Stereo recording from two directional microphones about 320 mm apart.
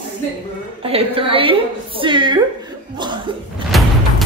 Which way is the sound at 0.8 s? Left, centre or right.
Centre.